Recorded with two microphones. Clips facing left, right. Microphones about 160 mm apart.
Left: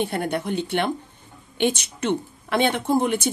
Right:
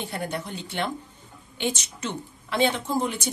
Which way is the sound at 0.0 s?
60° left (ahead or behind).